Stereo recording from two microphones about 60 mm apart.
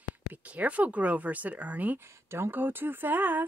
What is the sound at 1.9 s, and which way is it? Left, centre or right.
Speech, right.